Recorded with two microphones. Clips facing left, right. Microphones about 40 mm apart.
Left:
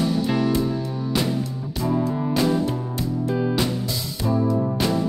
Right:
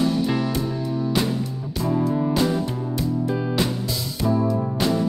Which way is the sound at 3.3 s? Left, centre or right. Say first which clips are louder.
Left 2 dB; centre.